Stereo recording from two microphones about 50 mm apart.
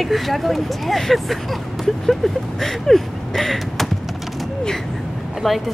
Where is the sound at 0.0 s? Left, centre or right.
Centre.